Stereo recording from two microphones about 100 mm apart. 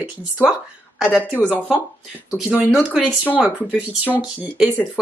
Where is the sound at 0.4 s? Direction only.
5° right (ahead or behind).